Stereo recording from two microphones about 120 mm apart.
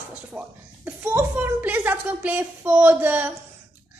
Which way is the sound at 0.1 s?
15° right (ahead or behind).